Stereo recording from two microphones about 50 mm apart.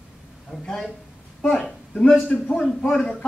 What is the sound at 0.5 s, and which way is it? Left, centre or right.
Speech, centre.